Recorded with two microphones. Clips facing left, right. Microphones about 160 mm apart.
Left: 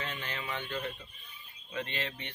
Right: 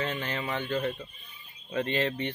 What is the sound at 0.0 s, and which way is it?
Speech, 40° right (ahead or behind).